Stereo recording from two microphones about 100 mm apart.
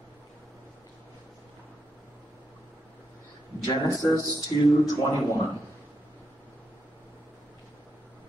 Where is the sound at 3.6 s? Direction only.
40° left (ahead or behind).